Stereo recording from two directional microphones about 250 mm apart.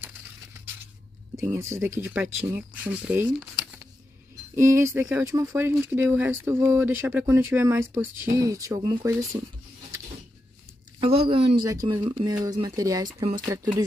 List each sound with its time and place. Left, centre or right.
1.3 s speech: centre
11.0 s speech: right